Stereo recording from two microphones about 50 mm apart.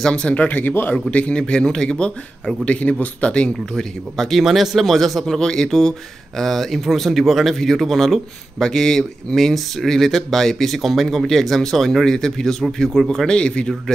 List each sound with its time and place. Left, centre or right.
0.0 s speech: left
1.1 s speech: left
3.4 s speech: centre
4.4 s speech: centre